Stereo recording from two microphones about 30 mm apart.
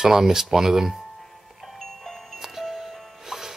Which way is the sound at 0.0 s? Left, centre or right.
Centre.